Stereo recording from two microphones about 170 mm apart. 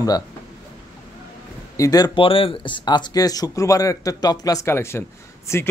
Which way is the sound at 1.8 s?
20° left (ahead or behind).